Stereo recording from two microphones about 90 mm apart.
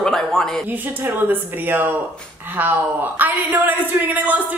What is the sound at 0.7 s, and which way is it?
Speech, 20° right (ahead or behind).